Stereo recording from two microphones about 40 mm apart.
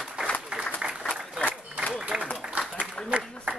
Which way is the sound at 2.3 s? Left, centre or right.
Right.